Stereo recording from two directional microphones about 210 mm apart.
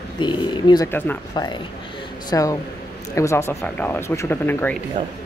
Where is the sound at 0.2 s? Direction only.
20° left (ahead or behind).